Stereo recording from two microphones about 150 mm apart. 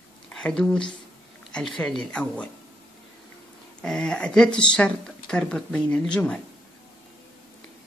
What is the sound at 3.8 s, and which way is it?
Speech, 5° left (ahead or behind).